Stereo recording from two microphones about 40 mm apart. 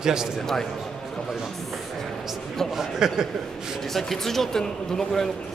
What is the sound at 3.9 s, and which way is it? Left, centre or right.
Speech, centre.